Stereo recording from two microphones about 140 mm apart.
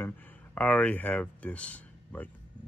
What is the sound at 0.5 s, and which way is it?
Speech, 10° left (ahead or behind).